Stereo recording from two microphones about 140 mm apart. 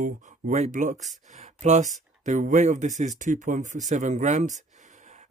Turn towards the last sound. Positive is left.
turn(degrees=-60)  # may be behind; listen again after turning